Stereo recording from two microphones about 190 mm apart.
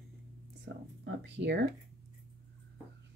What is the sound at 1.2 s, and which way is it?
Speech, 65° right (ahead or behind).